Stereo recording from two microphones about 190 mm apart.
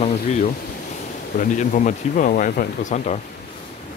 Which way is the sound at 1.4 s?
40° left (ahead or behind).